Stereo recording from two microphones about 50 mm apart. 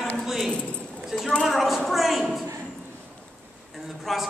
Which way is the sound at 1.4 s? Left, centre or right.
Centre.